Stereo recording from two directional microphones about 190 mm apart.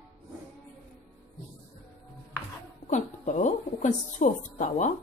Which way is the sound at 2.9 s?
40° left (ahead or behind).